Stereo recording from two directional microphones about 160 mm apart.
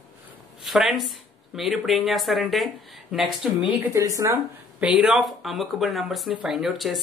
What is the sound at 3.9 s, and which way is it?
Speech, 20° right (ahead or behind).